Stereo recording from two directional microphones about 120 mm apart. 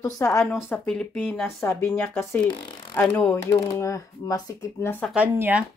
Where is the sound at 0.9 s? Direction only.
10° left (ahead or behind); by 4.4 s 25° left (ahead or behind).